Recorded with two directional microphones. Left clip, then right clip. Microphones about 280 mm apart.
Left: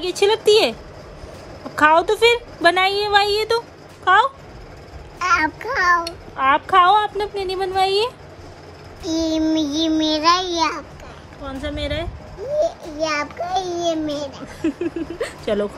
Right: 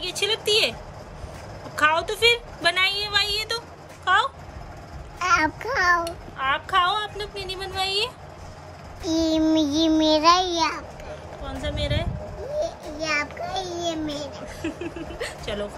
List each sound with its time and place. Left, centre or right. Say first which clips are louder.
0.2 s a woman's voice: left 8 dB; centre
1.8 s a woman's voice: left 6 dB; centre
5.2 s child singing: left 3 dB; centre
6.3 s a woman's voice: left 8 dB; centre
9.0 s child singing: left 1 dB; centre
11.4 s a woman's voice: left 3 dB; centre
12.5 s a child's voice: left 8 dB; centre
14.2 s a woman's voice: left 6 dB; centre